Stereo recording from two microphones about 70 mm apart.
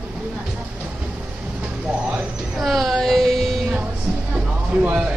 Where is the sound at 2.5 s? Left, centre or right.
Centre.